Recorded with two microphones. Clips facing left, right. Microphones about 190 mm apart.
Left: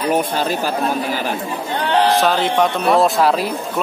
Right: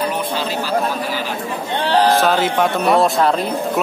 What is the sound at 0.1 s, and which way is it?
Speech, 45° left (ahead or behind).